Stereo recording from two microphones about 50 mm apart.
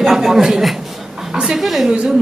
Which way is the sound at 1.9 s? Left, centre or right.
Centre.